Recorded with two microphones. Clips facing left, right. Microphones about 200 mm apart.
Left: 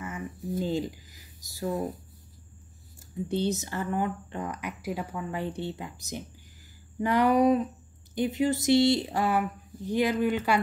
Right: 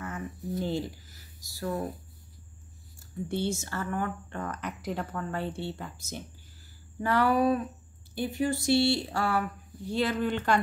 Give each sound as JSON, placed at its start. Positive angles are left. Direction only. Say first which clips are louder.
{"t": 0.7, "sound": "speech", "louder": "left 2 dB", "side_deg": 15}
{"t": 3.2, "sound": "speech", "louder": "left 3 dB", "side_deg": 20}